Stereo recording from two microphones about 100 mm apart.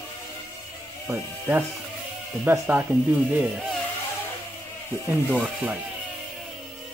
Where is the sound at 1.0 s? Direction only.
20° right (ahead or behind).